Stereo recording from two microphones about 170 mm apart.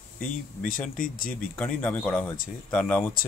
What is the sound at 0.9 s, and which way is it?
Speech, 55° left (ahead or behind).